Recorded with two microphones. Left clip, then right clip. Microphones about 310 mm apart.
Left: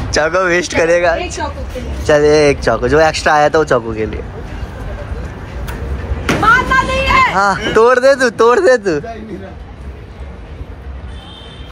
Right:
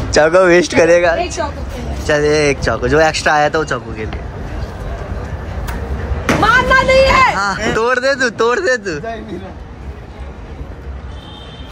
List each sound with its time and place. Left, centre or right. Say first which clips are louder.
0.1 s speech: right 4 dB; centre
6.4 s a sound: even; right
7.3 s speech: left 5 dB; centre